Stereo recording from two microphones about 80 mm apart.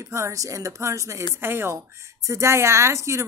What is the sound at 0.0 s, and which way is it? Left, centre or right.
Speech, right.